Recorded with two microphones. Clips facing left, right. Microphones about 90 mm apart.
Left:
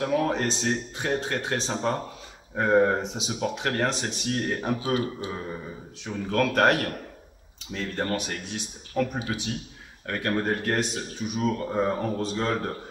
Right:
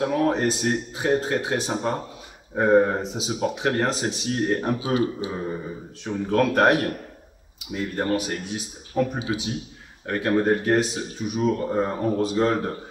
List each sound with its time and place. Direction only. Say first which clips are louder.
0.1 s a man's voice: right 3 dB; 5° right (ahead or behind)
4.5 s a man's voice: right 5 dB; centre (ahead or behind)
4.7 s speech: right 3 dB; 20° right (ahead or behind)